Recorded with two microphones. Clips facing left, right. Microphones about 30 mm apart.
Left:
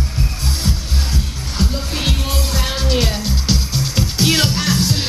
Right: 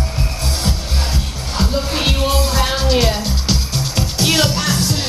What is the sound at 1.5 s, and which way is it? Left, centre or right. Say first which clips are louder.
Music: right 3 dB; centre.